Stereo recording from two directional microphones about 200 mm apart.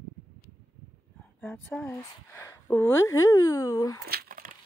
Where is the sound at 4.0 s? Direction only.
50° right (ahead or behind).